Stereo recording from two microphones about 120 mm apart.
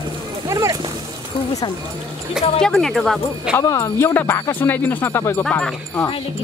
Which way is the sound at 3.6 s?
25° left (ahead or behind).